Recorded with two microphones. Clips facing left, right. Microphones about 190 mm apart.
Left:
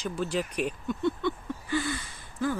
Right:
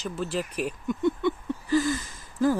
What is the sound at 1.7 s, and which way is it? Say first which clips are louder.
Gasp: right 6 dB; 40° right (ahead or behind).